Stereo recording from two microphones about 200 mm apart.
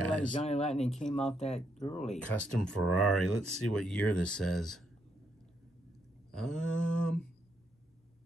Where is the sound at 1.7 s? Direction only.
35° left (ahead or behind).